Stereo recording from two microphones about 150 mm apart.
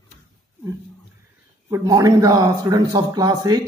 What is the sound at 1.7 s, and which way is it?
Speech, 25° right (ahead or behind).